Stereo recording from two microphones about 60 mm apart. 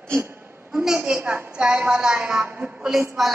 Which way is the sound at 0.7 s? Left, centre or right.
Centre.